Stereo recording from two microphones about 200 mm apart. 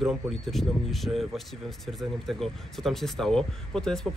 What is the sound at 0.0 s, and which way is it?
Speech, centre (ahead or behind).